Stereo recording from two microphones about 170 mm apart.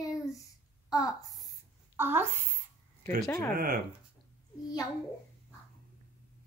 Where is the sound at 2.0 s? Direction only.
15° right (ahead or behind).